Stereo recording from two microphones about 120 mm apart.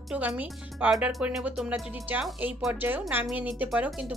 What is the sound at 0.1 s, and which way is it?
Speech, 10° right (ahead or behind).